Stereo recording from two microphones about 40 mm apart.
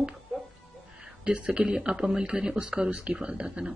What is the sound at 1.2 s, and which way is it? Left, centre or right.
Speech, right.